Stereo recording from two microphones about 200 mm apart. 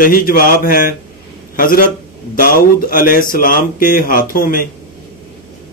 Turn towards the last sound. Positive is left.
turn(degrees=45)  # may be behind; listen again after turning